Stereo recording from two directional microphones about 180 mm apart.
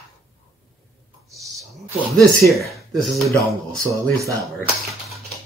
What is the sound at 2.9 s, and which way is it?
Speech, centre (ahead or behind).